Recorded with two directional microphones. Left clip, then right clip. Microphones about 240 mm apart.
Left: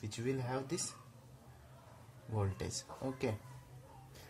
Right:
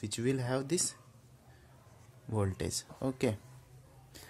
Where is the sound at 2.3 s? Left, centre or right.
Right.